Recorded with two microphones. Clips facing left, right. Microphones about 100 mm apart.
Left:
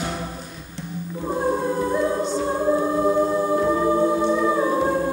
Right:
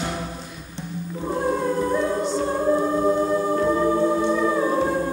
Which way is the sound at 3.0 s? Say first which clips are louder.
Left 1 dB; 5° left (ahead or behind).